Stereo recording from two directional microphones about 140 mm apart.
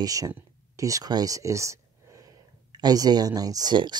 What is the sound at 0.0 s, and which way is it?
Speech, 25° right (ahead or behind).